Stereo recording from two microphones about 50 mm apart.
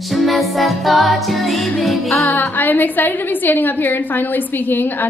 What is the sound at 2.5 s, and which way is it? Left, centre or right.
A woman's voice, left.